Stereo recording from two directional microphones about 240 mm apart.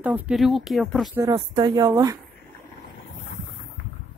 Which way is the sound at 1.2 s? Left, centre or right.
Centre.